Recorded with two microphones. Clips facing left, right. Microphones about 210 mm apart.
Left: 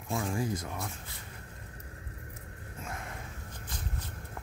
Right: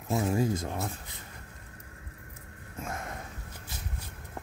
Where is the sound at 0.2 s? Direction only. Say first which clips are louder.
Right 6 dB; 25° right (ahead or behind).